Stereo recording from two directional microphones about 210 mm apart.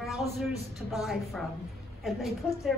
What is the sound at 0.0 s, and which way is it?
A woman's voice, centre (ahead or behind).